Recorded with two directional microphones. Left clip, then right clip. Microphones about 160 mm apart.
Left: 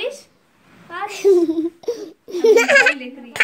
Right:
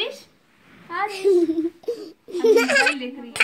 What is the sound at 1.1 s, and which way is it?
A child's voice, 45° left (ahead or behind).